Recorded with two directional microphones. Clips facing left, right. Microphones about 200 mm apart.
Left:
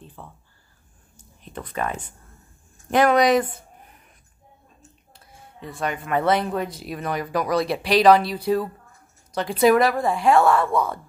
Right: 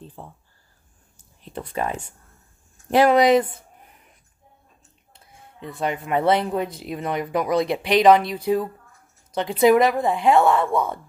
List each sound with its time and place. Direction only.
0.0 s a sound: 30° right (ahead or behind)
1.4 s speech: 30° right (ahead or behind)
5.8 s speech: 25° right (ahead or behind)